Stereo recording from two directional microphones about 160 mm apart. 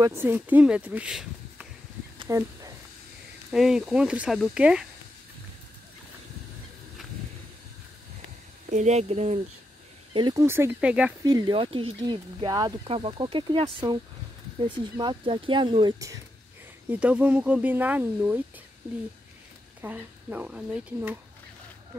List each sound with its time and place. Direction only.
0.0 s speech: 15° right (ahead or behind)
2.2 s a sound: 20° right (ahead or behind)
3.5 s speech: 5° right (ahead or behind)
8.6 s speech: 45° right (ahead or behind)
10.1 s speech: 30° right (ahead or behind)
10.4 s speech: 15° right (ahead or behind)
11.2 s speech: 20° right (ahead or behind)
11.5 s speech: 35° right (ahead or behind)
16.9 s speech: 10° right (ahead or behind)
19.8 s speech: 10° right (ahead or behind)